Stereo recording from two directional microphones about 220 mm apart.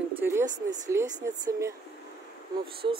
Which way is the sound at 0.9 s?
10° right (ahead or behind).